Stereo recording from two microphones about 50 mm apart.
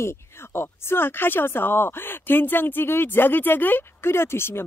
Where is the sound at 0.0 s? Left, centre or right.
Left.